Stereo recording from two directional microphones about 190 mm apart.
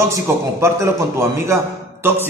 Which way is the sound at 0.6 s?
15° right (ahead or behind).